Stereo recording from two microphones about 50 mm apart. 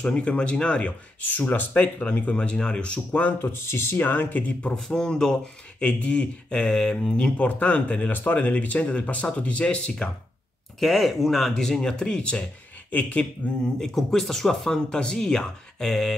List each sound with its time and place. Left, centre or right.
0.0 s speech: left
3.5 s speech: left
4.7 s speech: centre
7.3 s speech: left
8.1 s speech: left
10.8 s speech: centre; by 13.3 s left
13.7 s speech: centre